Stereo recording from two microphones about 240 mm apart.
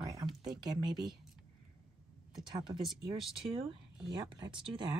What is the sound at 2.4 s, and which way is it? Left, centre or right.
Speech, centre.